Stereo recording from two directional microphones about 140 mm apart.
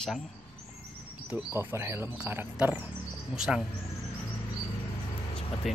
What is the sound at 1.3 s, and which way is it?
Speech, 15° right (ahead or behind).